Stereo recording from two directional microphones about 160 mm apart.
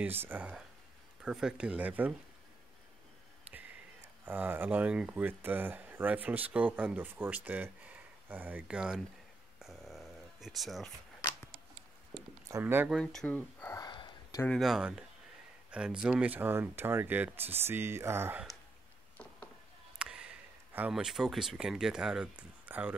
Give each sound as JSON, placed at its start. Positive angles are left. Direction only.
{"t": 0.0, "sound": "speech", "side_deg": -15}
{"t": 4.3, "sound": "speech", "side_deg": -10}
{"t": 9.6, "sound": "a sound", "side_deg": 0}
{"t": 12.4, "sound": "speech", "side_deg": -15}
{"t": 12.9, "sound": "speech", "side_deg": 5}
{"t": 13.7, "sound": "a sound", "side_deg": 25}
{"t": 14.6, "sound": "speech", "side_deg": -5}
{"t": 20.0, "sound": "speech", "side_deg": -5}